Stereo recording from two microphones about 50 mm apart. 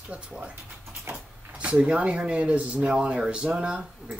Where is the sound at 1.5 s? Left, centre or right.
Right.